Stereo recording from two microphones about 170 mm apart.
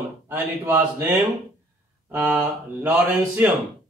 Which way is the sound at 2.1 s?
10° right (ahead or behind).